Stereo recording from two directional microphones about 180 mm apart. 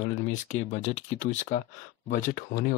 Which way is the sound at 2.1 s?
50° left (ahead or behind).